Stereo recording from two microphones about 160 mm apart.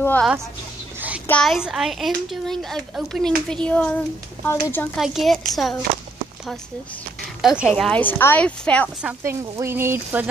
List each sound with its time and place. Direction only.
1.2 s a child's voice: 10° left (ahead or behind)
1.5 s a child's voice: 5° right (ahead or behind); by 4.8 s 15° left (ahead or behind)
4.9 s a child's voice: centre (ahead or behind)
7.4 s a woman's voice: centre (ahead or behind)
9.0 s speech: 15° right (ahead or behind)